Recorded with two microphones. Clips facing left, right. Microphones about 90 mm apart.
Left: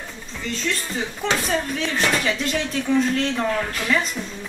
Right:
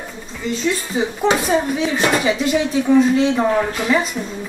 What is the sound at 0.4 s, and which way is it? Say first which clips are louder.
Speech: right 6 dB; 5° right (ahead or behind).